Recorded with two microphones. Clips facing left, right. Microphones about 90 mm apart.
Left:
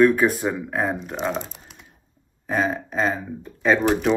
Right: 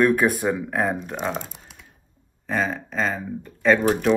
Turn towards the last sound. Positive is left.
turn(degrees=10)  # may be behind; listen again after turning